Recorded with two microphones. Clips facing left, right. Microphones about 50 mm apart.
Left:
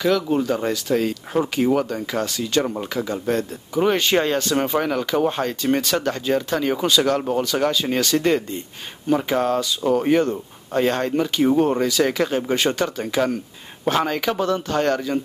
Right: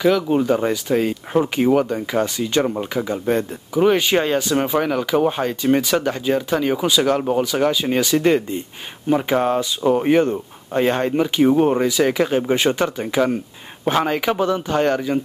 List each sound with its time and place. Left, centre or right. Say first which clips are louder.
0.0 s speech: right 3 dB; centre